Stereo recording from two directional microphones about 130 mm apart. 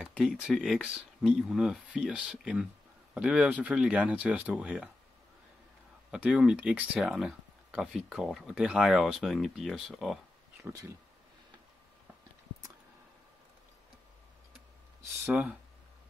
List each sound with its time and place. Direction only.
0.0 s speech: centre (ahead or behind)
6.1 s speech: 5° right (ahead or behind)
10.6 s speech: 25° right (ahead or behind)
15.2 s speech: 10° right (ahead or behind)